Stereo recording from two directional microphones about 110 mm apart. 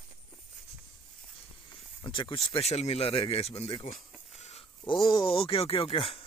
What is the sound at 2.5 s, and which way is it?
Speech, 75° left (ahead or behind).